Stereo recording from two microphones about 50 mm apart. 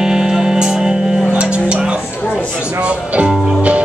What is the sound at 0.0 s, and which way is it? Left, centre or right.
Music, centre.